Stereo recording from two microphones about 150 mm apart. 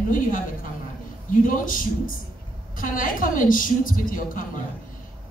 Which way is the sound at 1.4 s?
65° left (ahead or behind).